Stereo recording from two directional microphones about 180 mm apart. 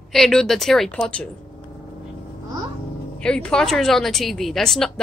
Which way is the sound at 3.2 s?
5° left (ahead or behind).